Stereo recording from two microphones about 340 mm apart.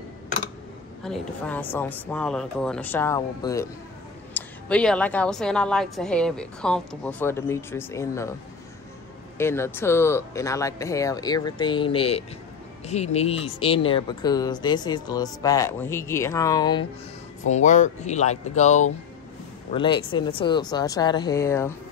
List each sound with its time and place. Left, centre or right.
1.0 s a woman's voice: centre
9.4 s speech: centre